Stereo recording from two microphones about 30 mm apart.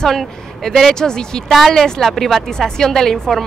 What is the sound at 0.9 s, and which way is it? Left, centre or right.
Speech, left.